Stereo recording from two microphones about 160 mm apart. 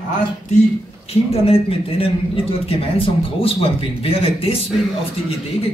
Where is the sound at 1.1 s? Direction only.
40° left (ahead or behind).